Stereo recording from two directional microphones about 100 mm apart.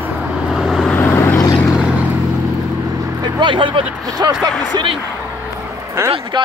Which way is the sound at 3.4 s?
55° right (ahead or behind).